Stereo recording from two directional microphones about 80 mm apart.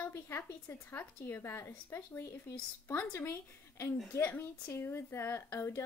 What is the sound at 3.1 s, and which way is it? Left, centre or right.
A woman's voice, left.